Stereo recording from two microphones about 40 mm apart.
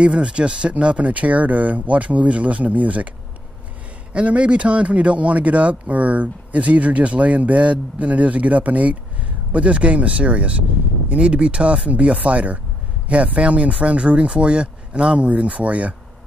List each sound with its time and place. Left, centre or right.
0.0 s speech: right
4.1 s speech: right